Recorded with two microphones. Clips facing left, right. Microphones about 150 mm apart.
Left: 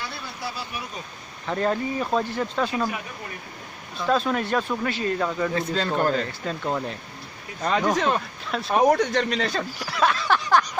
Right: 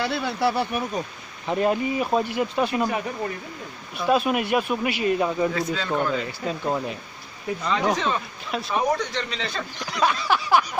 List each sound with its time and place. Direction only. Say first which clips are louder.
0.0 s speech: right 11 dB; 80° right; by 1.0 s 55° right (ahead or behind)
1.5 s speech: right 2 dB; 15° right (ahead or behind)
3.9 s speech: right 2 dB; 15° right (ahead or behind)
5.5 s speech: right 1 dB; 30° left (ahead or behind)
6.2 s speech: right 2 dB; 10° right (ahead or behind)
7.6 s speech: left 2 dB; 50° left (ahead or behind)
9.8 s a sound: right 1 dB; 5° left (ahead or behind)